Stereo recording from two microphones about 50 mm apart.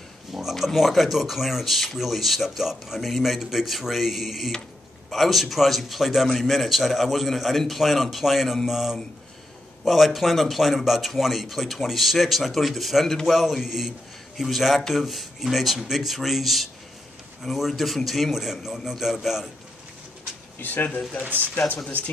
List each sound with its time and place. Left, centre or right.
0.3 s a sound: centre
0.7 s a man's voice: centre
20.5 s speech: left
21.2 s speech: right